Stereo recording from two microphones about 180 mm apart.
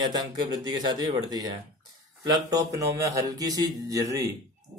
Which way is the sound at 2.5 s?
20° right (ahead or behind).